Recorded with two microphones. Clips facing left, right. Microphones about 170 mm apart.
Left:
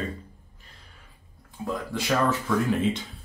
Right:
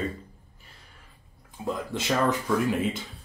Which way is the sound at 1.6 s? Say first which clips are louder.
Even; 15° right (ahead or behind).